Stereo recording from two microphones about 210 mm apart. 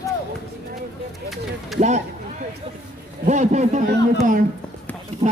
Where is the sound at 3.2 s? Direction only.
35° right (ahead or behind).